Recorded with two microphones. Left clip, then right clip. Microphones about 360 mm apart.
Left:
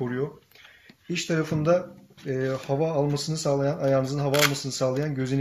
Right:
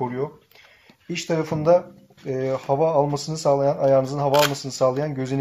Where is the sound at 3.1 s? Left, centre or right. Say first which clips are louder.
Right 4 dB; centre.